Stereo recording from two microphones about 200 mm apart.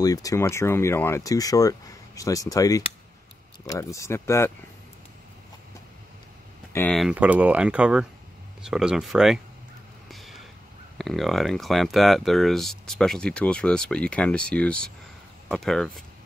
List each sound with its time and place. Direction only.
0.0 s speech: 15° left (ahead or behind)
6.7 s speech: 10° left (ahead or behind)
7.0 s speech: 5° right (ahead or behind)
10.0 s a sound: centre (ahead or behind)
11.0 s speech: centre (ahead or behind)